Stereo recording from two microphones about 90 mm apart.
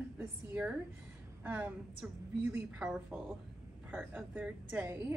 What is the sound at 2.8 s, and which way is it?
Speech, 10° right (ahead or behind).